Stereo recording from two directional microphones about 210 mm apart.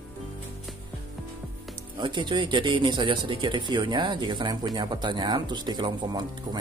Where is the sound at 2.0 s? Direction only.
20° right (ahead or behind).